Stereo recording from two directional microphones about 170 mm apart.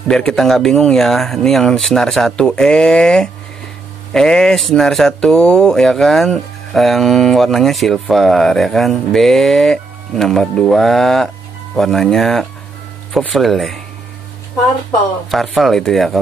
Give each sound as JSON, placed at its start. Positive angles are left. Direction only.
{"t": 0.1, "sound": "speech", "side_deg": 0}
{"t": 14.9, "sound": "speech", "side_deg": 0}